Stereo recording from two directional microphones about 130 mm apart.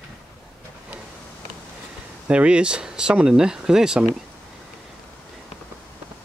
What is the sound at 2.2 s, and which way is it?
Speech, 10° right (ahead or behind).